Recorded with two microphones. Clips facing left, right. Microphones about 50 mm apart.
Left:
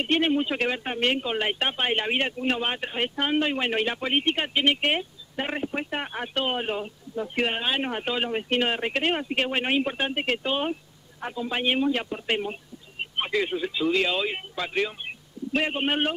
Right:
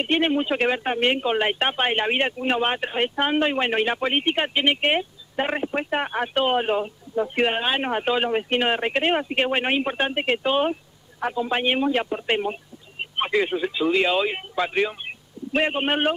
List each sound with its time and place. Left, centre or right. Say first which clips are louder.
0.0 s speech: right 2 dB; centre